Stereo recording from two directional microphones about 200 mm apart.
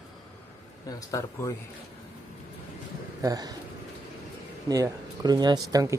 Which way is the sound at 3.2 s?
20° right (ahead or behind).